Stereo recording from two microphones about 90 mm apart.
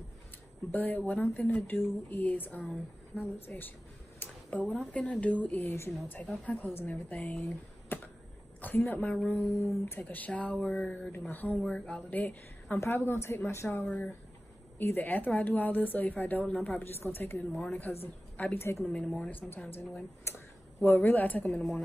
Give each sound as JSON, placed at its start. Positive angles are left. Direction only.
{"t": 0.7, "sound": "a woman's voice", "side_deg": 20}
{"t": 8.5, "sound": "a woman's voice", "side_deg": 20}
{"t": 11.5, "sound": "a woman's voice", "side_deg": 5}
{"t": 13.8, "sound": "a woman's voice", "side_deg": 10}
{"t": 14.8, "sound": "a woman's voice", "side_deg": 20}
{"t": 19.0, "sound": "a woman's voice", "side_deg": 10}
{"t": 19.5, "sound": "speech", "side_deg": 20}
{"t": 20.2, "sound": "a sound", "side_deg": 30}
{"t": 21.5, "sound": "speech", "side_deg": 5}